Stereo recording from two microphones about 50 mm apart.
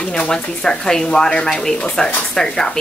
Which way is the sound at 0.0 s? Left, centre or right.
Centre.